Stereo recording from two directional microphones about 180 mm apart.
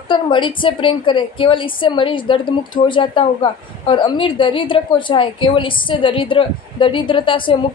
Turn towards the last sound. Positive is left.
turn(degrees=30)  # may be behind; listen again after turning